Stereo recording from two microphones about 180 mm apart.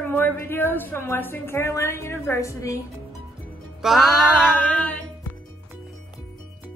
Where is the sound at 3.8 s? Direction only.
Centre (ahead or behind).